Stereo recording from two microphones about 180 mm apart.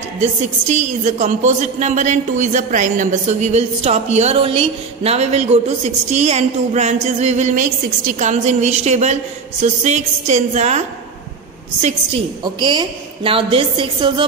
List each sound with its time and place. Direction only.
0.2 s a woman's voice: 40° right (ahead or behind)
12.5 s a woman's voice: 25° right (ahead or behind)